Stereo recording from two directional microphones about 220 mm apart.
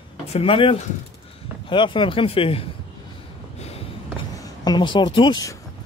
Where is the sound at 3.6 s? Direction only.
25° left (ahead or behind).